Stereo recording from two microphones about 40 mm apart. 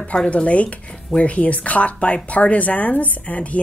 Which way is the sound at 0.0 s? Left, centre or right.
Left.